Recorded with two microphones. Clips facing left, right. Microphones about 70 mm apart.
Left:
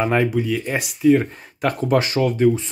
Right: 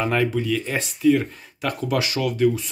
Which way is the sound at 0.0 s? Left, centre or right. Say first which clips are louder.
Left 3 dB; left.